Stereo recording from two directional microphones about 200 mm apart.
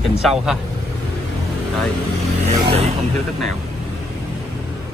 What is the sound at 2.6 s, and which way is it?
Speech, 30° right (ahead or behind).